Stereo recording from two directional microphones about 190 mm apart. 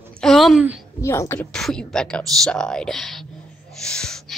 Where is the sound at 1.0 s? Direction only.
15° left (ahead or behind).